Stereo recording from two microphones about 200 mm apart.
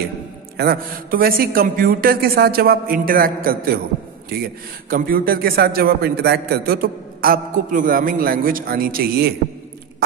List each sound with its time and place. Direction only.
0.6 s a man's voice: 50° right (ahead or behind)